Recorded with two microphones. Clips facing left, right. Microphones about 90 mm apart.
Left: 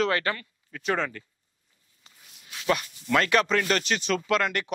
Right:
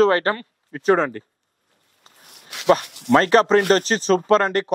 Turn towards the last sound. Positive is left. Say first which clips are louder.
# right 8 dB
turn(degrees=-35)  # may be behind; listen again after turning